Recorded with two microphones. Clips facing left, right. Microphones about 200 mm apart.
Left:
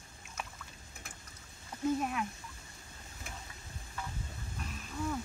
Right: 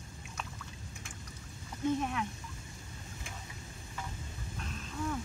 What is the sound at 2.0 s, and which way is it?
Speech, 5° left (ahead or behind).